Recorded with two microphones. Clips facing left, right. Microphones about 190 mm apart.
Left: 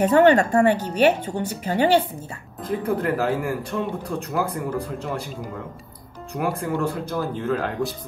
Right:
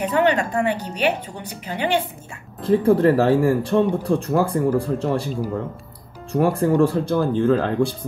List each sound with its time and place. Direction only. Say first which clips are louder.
0.0 s speech: left 4 dB; 45° left (ahead or behind)
2.6 s speech: right 8 dB; 30° right (ahead or behind)